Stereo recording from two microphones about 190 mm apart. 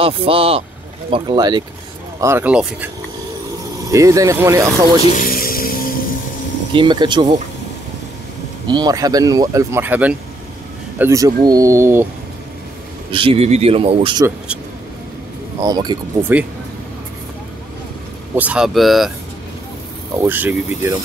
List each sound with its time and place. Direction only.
0.0 s speech: 30° right (ahead or behind); by 2.9 s 10° right (ahead or behind)
3.9 s speech: 15° right (ahead or behind)
5.1 s a sound: 45° left (ahead or behind)
6.7 s speech: 25° right (ahead or behind)
8.6 s speech: 20° right (ahead or behind)
13.1 s speech: 30° right (ahead or behind)
15.6 s speech: 20° right (ahead or behind)
18.3 s speech: 5° right (ahead or behind)
20.2 s speech: 10° right (ahead or behind)